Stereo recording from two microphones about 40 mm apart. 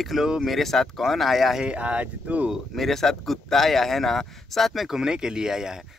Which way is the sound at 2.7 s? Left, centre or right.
Centre.